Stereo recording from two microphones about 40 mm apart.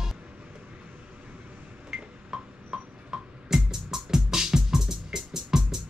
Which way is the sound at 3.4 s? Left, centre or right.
Centre.